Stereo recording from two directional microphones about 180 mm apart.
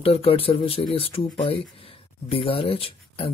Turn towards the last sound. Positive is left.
turn(degrees=30)  # may be behind; listen again after turning